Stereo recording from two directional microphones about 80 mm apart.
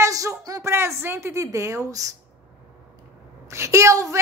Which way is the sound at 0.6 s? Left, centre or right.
Right.